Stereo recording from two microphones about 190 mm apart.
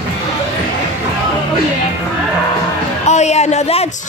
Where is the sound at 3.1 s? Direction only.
35° left (ahead or behind).